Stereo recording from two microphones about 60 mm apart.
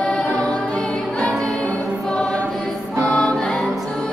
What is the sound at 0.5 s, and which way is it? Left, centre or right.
Music, centre.